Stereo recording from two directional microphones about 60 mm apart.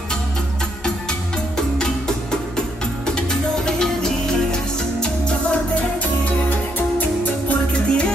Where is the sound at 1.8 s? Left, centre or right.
Centre.